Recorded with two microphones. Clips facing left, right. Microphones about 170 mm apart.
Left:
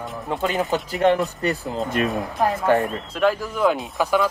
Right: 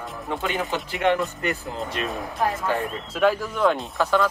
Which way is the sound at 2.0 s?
50° left (ahead or behind).